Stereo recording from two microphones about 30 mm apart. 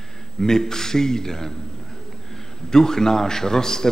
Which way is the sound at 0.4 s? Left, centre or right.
Centre.